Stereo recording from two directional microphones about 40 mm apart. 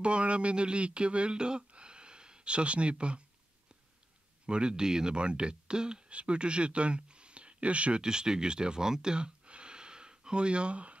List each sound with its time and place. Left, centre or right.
0.0 s speech: right
4.5 s speech: right
8.0 s speech: centre